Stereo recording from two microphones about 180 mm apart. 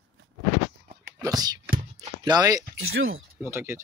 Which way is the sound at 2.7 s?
90° right.